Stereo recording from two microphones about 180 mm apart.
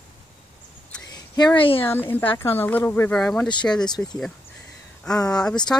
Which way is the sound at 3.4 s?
25° left (ahead or behind).